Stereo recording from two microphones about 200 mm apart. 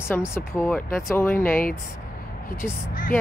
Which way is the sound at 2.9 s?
40° left (ahead or behind).